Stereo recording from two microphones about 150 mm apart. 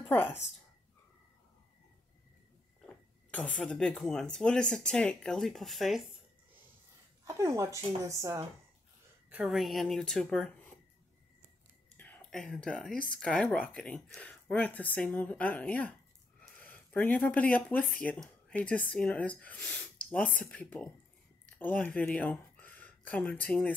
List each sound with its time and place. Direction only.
3.3 s speech: 10° left (ahead or behind)
7.2 s speech: 20° right (ahead or behind)
9.3 s speech: 5° right (ahead or behind)
12.0 s speech: 10° left (ahead or behind)